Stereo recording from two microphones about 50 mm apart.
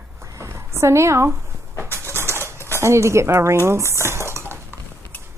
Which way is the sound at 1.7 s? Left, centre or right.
Right.